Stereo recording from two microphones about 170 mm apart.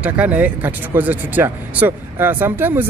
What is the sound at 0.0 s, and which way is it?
Speech, 10° right (ahead or behind).